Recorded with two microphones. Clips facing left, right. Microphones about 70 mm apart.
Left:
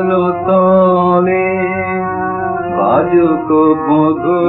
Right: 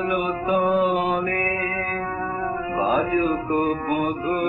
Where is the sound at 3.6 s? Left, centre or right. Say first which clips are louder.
Left 15 dB; left.